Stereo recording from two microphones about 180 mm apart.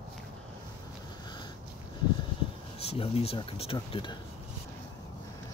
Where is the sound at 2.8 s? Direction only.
35° left (ahead or behind).